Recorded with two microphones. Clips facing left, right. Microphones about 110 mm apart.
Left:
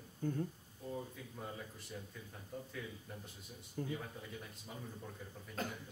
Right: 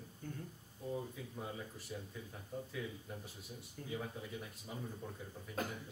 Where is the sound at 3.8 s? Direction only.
35° left (ahead or behind).